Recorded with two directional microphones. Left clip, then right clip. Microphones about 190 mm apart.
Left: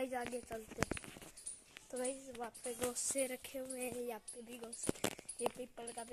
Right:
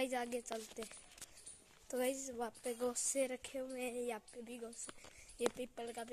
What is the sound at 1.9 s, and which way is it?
Speech, 45° right (ahead or behind).